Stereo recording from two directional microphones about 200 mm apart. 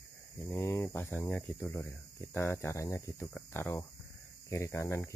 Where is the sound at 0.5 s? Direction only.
15° left (ahead or behind).